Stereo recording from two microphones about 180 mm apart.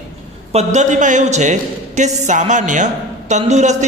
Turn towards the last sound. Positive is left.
turn(degrees=-40)  # may be behind; listen again after turning